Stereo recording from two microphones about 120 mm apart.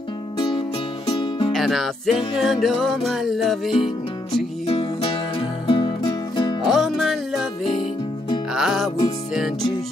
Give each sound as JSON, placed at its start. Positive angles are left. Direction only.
{"t": 0.4, "sound": "music", "side_deg": 40}
{"t": 1.5, "sound": "music", "side_deg": 0}
{"t": 4.6, "sound": "music", "side_deg": 50}
{"t": 6.6, "sound": "music", "side_deg": 0}
{"t": 8.5, "sound": "music", "side_deg": -5}